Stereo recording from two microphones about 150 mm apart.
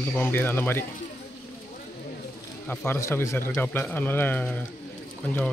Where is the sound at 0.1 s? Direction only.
15° left (ahead or behind).